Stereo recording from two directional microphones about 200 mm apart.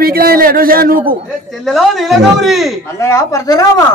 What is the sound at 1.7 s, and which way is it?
A man's voice, centre (ahead or behind).